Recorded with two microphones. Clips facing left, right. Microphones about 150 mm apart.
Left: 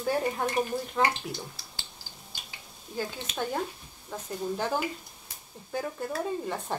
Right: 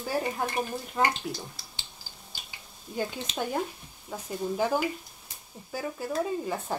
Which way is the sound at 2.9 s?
15° right (ahead or behind).